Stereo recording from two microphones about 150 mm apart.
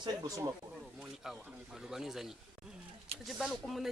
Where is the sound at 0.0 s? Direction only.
25° right (ahead or behind).